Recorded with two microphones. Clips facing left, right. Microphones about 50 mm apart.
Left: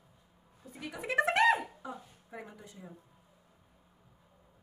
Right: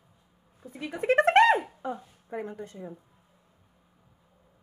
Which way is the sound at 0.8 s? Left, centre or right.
Right.